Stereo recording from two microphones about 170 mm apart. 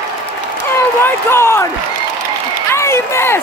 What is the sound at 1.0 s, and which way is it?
Speech, 15° left (ahead or behind).